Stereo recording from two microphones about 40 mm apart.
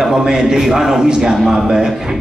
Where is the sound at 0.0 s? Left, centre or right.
Centre.